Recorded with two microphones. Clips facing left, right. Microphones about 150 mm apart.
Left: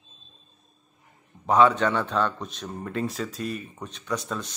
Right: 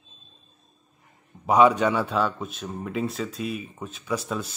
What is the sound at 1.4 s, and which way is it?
A man's voice, 10° right (ahead or behind).